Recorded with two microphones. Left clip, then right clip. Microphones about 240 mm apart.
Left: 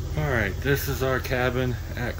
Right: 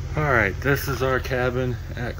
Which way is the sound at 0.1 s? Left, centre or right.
Centre.